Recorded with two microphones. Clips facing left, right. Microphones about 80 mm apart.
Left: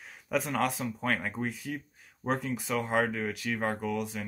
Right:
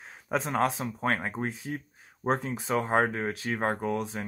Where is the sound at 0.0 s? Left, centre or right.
Right.